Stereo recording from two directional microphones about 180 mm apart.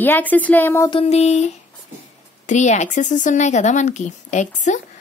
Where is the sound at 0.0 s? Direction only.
10° left (ahead or behind).